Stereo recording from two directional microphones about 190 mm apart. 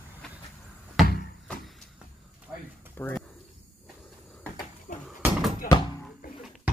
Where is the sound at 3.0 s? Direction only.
10° left (ahead or behind).